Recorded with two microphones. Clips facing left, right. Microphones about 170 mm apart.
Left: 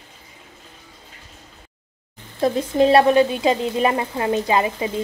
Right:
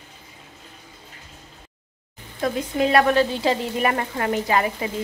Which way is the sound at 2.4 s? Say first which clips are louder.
Left 5 dB; 30° left (ahead or behind).